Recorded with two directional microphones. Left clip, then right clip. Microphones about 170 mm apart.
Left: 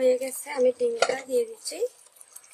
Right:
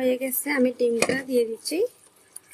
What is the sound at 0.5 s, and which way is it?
Dishes, 40° right (ahead or behind).